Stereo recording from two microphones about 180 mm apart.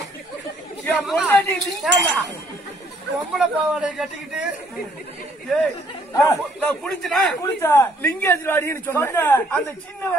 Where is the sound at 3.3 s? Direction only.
5° right (ahead or behind).